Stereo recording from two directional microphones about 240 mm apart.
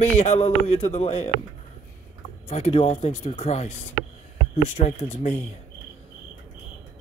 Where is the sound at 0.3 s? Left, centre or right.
Left.